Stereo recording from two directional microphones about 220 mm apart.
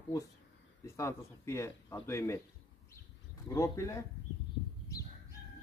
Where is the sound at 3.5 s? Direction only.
15° left (ahead or behind).